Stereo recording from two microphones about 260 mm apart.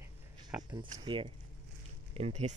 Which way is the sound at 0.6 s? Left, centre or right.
Centre.